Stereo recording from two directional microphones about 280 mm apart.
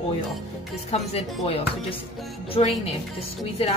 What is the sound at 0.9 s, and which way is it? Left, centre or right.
Speech, left.